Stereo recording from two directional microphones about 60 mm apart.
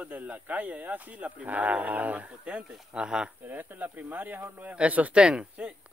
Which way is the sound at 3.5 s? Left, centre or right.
Right.